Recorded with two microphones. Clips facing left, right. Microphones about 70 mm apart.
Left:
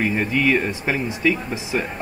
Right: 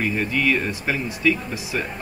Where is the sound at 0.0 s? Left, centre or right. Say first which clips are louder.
Left 2 dB; left.